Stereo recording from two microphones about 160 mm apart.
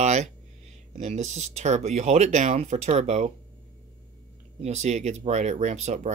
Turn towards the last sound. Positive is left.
turn(degrees=-45)  # may be behind; listen again after turning